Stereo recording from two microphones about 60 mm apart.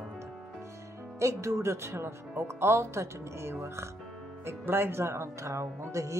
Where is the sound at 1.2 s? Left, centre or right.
Right.